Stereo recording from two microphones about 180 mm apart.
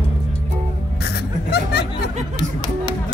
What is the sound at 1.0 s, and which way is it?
Snicker, 65° left (ahead or behind).